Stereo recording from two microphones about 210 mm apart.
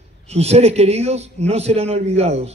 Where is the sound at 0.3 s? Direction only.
30° right (ahead or behind).